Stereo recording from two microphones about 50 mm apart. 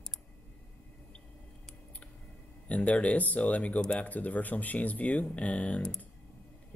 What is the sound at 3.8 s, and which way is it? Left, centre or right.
Speech, centre.